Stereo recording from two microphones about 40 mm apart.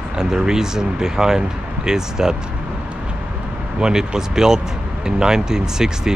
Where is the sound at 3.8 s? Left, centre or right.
Centre.